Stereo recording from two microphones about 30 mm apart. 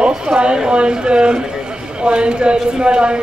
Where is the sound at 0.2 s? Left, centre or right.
Right.